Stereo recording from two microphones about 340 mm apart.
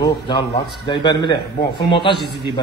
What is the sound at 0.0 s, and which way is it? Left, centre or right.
A man's voice, centre.